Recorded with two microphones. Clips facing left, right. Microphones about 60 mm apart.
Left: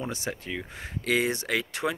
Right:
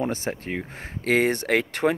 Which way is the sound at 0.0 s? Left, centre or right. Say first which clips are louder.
Right 6 dB; right.